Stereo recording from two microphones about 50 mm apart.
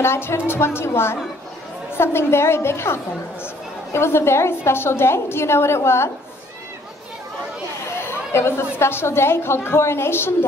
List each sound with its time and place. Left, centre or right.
0.0 s a woman's voice: left
8.0 s a woman's voice: left